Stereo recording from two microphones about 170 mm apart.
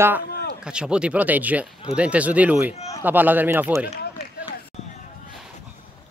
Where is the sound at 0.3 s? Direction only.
70° left (ahead or behind).